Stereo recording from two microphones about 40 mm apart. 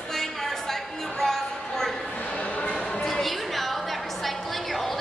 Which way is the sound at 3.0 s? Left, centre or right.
Centre.